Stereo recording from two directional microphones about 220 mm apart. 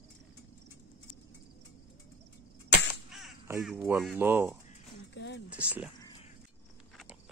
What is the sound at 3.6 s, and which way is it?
Speech, 5° right (ahead or behind).